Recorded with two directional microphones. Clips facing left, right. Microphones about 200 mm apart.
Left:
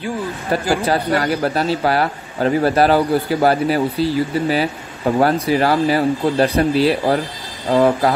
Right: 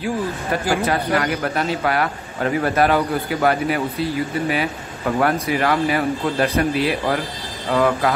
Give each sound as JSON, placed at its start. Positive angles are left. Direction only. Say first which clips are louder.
{"t": 0.8, "sound": "speech", "louder": "left 2 dB", "side_deg": 30}